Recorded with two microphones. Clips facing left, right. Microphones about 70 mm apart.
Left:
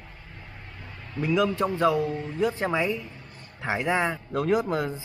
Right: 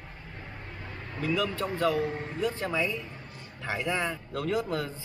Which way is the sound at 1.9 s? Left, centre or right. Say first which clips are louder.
Left 3 dB; right.